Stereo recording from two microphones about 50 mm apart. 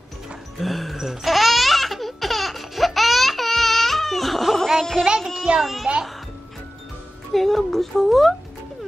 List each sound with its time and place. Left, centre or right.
0.6 s laughter: centre
5.0 s music: centre
5.6 s a child's voice: centre
7.3 s speech: centre